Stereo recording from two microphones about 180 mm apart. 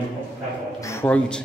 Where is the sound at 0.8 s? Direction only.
15° left (ahead or behind).